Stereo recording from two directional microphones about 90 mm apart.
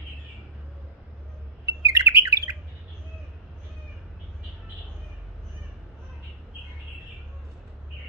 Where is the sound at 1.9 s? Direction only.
30° right (ahead or behind).